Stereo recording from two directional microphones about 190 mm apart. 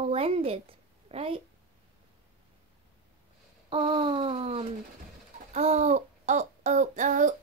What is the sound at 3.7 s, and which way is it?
Speech, 30° right (ahead or behind).